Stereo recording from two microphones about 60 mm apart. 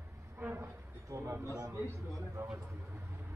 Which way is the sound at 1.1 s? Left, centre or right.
Right.